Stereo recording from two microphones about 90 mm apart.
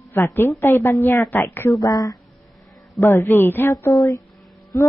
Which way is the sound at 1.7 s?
45° left (ahead or behind).